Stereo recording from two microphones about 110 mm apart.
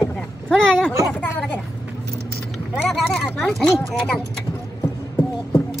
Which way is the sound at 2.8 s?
Centre (ahead or behind).